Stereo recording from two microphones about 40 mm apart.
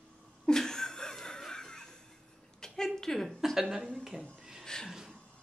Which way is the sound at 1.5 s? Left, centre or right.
Centre.